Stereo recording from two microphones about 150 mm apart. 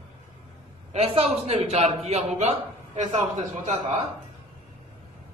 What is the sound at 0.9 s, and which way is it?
A woman's voice, 40° right (ahead or behind).